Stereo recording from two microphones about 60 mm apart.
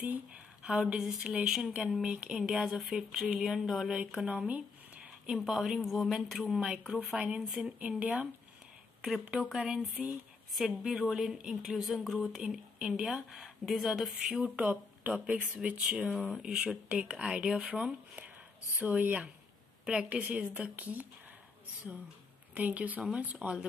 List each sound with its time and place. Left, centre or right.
0.7 s a woman's voice: centre
2.0 s speech: centre
3.9 s speech: centre
4.5 s a sound: right
5.4 s a woman's voice: centre
7.2 s speech: centre
9.3 s a woman's voice: centre
12.4 s a woman's voice: centre
22.5 s speech: right